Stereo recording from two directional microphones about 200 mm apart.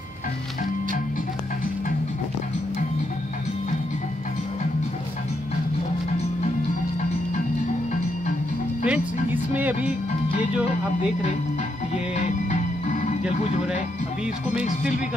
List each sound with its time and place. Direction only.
8.8 s music: 5° right (ahead or behind)
12.2 s music: 40° left (ahead or behind)